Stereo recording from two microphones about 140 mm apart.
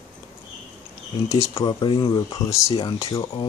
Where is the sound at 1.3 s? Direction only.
20° left (ahead or behind).